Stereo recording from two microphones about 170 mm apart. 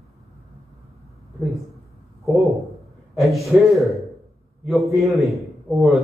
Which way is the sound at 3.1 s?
Centre (ahead or behind).